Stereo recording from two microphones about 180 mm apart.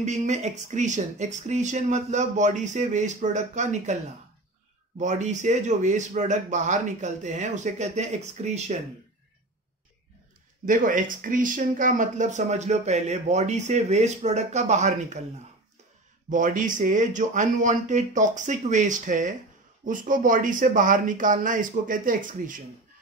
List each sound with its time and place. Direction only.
0.0 s speech: 40° right (ahead or behind)
10.7 s speech: 45° right (ahead or behind)
16.3 s speech: 45° right (ahead or behind)